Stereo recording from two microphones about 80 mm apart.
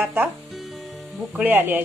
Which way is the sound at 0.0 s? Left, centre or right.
Centre.